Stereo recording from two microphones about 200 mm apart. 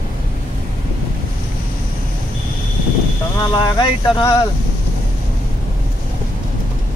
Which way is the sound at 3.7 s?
15° left (ahead or behind).